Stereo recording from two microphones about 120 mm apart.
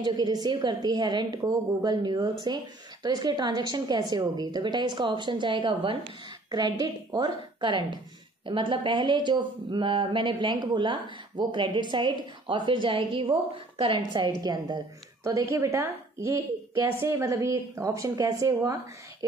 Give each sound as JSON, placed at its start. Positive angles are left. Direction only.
{"t": 0.0, "sound": "speech", "side_deg": -35}
{"t": 15.2, "sound": "a woman's voice", "side_deg": -25}